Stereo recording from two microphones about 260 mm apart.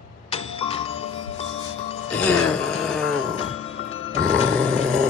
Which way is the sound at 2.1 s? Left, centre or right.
Centre.